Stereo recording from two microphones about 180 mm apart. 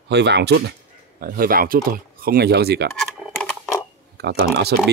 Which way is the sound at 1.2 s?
55° right (ahead or behind).